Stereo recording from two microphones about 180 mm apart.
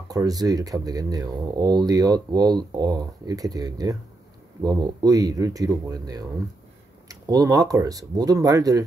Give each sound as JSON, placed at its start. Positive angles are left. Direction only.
{"t": 0.1, "sound": "speech", "side_deg": -20}